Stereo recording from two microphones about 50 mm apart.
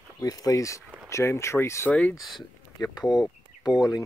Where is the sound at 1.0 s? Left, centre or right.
Left.